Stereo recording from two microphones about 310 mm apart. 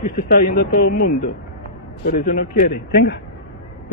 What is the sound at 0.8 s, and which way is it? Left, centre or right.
Speech, left.